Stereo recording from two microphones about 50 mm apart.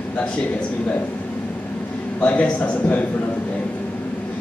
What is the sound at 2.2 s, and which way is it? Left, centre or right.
Speech, left.